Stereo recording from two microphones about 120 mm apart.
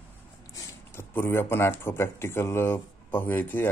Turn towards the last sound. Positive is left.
turn(degrees=15)  # may be behind; listen again after turning